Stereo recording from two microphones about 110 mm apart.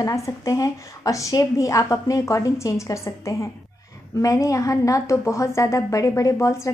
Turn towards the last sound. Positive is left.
turn(degrees=25)  # may be behind; listen again after turning